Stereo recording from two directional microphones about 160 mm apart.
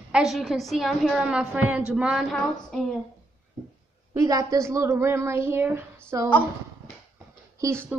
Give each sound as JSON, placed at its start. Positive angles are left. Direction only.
{"t": 0.1, "sound": "a woman's voice", "side_deg": 0}
{"t": 4.1, "sound": "a woman's voice", "side_deg": -20}
{"t": 7.6, "sound": "a woman's voice", "side_deg": -15}